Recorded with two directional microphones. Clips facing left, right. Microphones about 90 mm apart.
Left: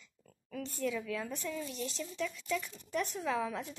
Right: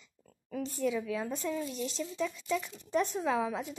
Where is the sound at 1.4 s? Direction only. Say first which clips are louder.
Right 4 dB; 30° right (ahead or behind).